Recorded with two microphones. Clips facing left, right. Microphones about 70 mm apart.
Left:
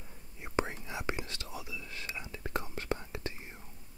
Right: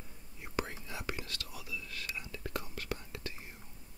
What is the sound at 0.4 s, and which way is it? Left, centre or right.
Whispering, left.